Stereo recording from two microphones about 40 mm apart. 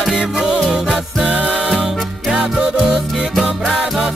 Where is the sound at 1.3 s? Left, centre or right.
Right.